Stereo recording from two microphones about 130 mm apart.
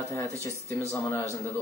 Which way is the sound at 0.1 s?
25° left (ahead or behind).